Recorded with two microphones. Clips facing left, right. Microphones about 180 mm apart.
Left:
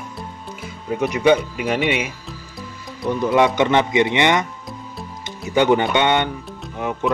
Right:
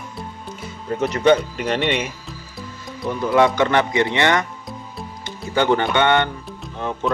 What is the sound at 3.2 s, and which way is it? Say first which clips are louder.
Speech: even; 20° left (ahead or behind).